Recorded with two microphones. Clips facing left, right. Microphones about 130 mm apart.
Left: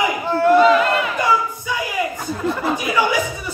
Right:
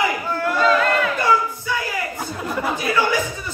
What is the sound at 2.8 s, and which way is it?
Speech, 15° left (ahead or behind).